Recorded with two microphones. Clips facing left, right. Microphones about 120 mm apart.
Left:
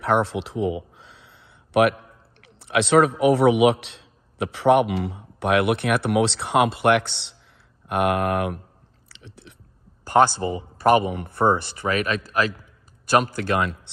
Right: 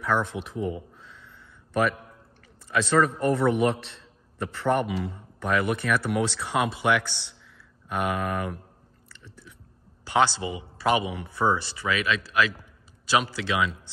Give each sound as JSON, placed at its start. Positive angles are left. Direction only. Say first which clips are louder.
{"t": 0.0, "sound": "a sound", "louder": "left 5 dB", "side_deg": 70}
{"t": 2.4, "sound": "a man's voice", "louder": "left 4 dB", "side_deg": 75}
{"t": 9.1, "sound": "chewing", "louder": "left 3 dB", "side_deg": 75}
{"t": 10.0, "sound": "speech", "louder": "left 5 dB", "side_deg": 45}